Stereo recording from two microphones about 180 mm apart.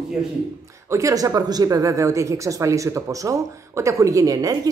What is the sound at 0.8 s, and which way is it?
A woman's voice, 15° right (ahead or behind).